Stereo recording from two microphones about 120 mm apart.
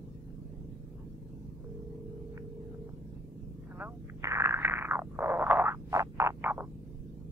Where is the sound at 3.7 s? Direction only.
20° right (ahead or behind).